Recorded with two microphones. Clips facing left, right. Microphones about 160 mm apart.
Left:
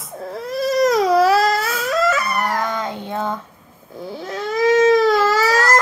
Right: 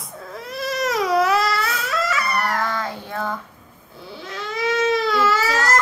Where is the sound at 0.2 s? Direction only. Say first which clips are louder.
Left 7 dB; 35° left (ahead or behind).